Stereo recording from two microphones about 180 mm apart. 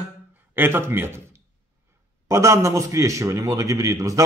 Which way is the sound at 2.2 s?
15° right (ahead or behind).